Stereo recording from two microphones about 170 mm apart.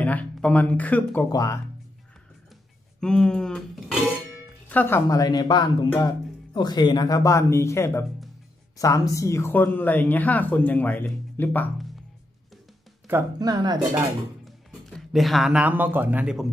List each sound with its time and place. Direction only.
0.0 s speech: 10° left (ahead or behind)
1.3 s speech: 20° left (ahead or behind)
3.0 s speech: 5° left (ahead or behind)
13.4 s speech: 25° right (ahead or behind)
14.4 s speech: centre (ahead or behind)